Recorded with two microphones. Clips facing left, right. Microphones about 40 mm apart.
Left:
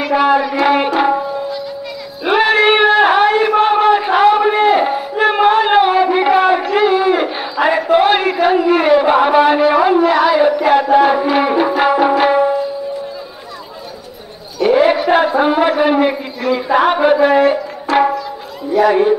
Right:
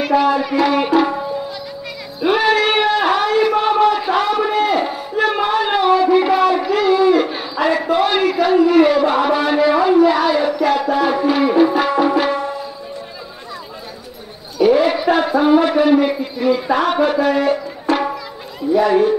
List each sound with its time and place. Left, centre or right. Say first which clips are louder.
0.0 s speech: left 2 dB; centre
0.6 s music: left 2 dB; left
2.2 s a sound: left 3 dB; left
14.7 s a sound: left 4 dB; centre
15.8 s speech: left 1 dB; left
18.7 s speech: left 2 dB; centre